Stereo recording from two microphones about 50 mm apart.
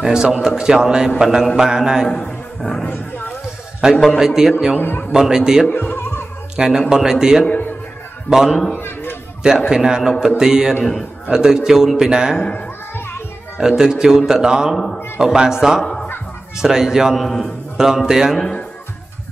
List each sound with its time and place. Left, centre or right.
0.0 s a man's voice: centre
2.0 s a man's voice: centre
3.9 s a man's voice: centre
4.2 s a man's voice: centre
4.7 s a man's voice: left
5.2 s a man's voice: centre
5.7 s speech: left
6.5 s a man's voice: centre
8.7 s a sound: left
9.7 s a man's voice: centre
13.6 s a man's voice: centre
15.8 s music: centre
16.5 s a man's voice: centre
18.3 s a man's voice: centre